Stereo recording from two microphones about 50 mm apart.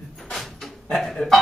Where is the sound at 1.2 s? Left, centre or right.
Centre.